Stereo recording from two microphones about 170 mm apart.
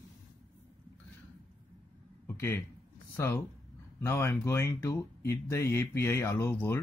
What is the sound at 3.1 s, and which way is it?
Speech, 15° left (ahead or behind).